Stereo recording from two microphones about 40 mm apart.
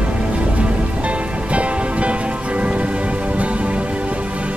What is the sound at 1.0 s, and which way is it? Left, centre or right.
Music, right.